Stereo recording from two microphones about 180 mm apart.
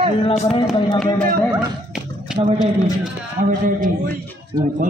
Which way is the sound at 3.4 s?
45° right (ahead or behind).